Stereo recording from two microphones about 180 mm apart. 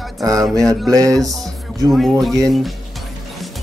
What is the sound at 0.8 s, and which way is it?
Music, 20° right (ahead or behind).